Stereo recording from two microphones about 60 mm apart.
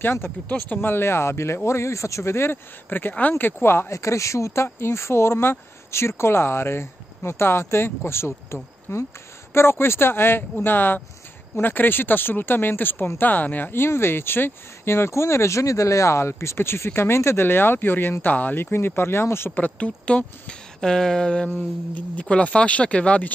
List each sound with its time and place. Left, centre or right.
0.0 s speech: left
0.5 s speech: left
0.7 s speech: left
3.9 s speech: left
19.5 s speech: left
21.5 s speech: left